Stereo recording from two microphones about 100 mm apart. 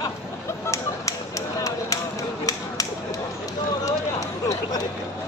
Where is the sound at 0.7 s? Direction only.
30° left (ahead or behind).